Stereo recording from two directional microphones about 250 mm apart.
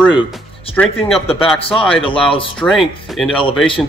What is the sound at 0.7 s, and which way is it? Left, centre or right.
Speech, centre.